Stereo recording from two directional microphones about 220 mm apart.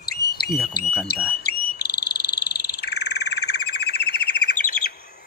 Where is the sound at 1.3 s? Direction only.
45° left (ahead or behind).